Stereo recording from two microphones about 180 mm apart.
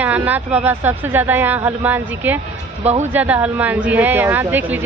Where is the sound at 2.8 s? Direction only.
35° right (ahead or behind).